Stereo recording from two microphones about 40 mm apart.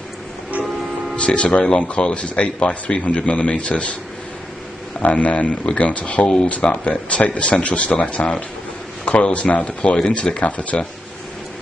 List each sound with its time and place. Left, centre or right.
1.1 s speech: left
5.0 s speech: left
6.2 s speech: centre
6.5 s speech: left